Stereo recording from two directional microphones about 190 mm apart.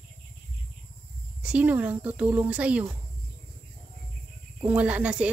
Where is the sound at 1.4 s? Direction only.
5° right (ahead or behind).